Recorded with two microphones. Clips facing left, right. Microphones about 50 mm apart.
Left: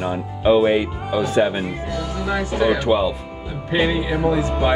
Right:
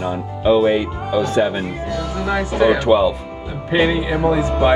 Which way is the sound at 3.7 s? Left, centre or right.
Right.